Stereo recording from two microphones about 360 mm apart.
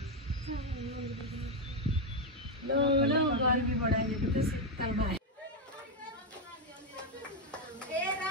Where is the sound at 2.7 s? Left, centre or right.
Right.